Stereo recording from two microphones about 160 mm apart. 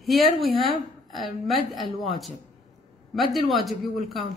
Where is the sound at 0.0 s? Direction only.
Centre (ahead or behind).